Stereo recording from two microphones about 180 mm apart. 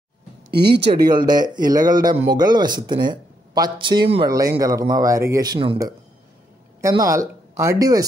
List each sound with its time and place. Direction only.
0.5 s speech: 65° right (ahead or behind)
1.0 s speech: 25° right (ahead or behind)
6.8 s speech: 20° right (ahead or behind)